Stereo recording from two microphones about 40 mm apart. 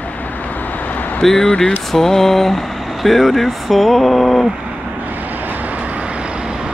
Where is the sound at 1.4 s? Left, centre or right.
Centre.